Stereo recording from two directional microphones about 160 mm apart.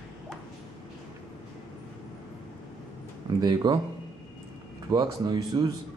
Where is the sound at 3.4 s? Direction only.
25° right (ahead or behind).